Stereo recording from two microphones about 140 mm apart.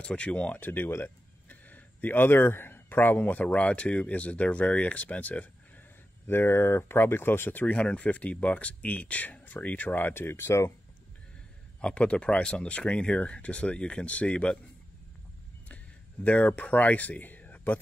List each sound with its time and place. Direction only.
0.0 s speech: 10° left (ahead or behind)
11.8 s speech: 10° left (ahead or behind)
16.3 s speech: 10° left (ahead or behind)